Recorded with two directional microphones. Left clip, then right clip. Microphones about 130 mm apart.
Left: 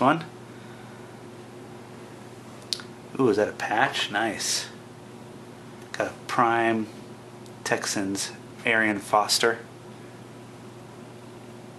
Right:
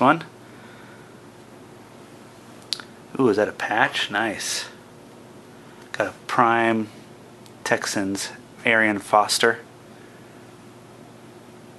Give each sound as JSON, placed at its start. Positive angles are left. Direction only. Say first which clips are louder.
{"t": 0.0, "sound": "speech", "louder": "right 4 dB", "side_deg": -25}
{"t": 2.7, "sound": "speech", "louder": "right 2 dB", "side_deg": -20}
{"t": 5.9, "sound": "speech", "louder": "right 4 dB", "side_deg": -20}